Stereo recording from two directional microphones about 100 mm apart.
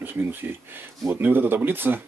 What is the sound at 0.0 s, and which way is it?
Speech, 20° right (ahead or behind).